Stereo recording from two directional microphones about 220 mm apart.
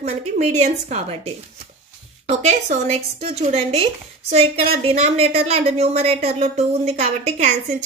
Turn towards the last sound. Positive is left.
turn(degrees=-35)  # may be behind; listen again after turning